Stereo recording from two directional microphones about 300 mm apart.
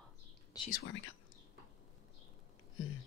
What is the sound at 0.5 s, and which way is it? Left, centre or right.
Whispering, centre.